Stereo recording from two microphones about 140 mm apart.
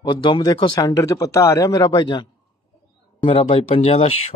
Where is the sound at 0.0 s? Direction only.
35° left (ahead or behind).